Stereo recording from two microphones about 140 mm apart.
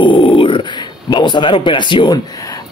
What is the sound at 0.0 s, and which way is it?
Speech, 40° left (ahead or behind).